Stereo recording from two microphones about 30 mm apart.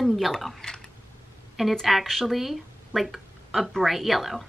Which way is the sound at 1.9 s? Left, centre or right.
Centre.